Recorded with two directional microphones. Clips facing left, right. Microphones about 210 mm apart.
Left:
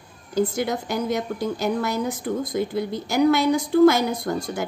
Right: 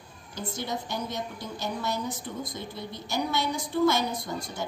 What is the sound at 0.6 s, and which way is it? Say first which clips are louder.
A woman's voice: left 8 dB; 90° left.